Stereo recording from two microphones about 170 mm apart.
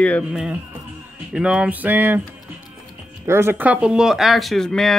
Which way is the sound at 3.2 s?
15° right (ahead or behind).